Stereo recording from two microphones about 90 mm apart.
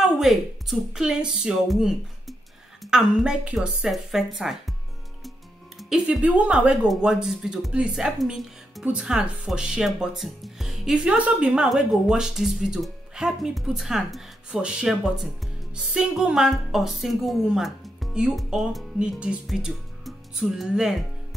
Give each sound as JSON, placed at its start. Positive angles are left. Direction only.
{"t": 0.0, "sound": "a woman's voice", "side_deg": -5}
{"t": 5.8, "sound": "music", "side_deg": -5}
{"t": 6.2, "sound": "a woman's voice", "side_deg": -15}